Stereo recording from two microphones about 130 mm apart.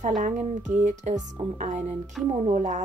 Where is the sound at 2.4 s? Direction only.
70° right (ahead or behind).